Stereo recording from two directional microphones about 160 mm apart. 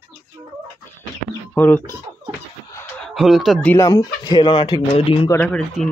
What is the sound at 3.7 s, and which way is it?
Speech, 20° left (ahead or behind).